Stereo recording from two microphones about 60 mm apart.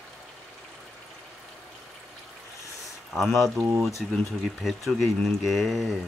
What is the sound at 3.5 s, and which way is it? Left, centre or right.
Speech, right.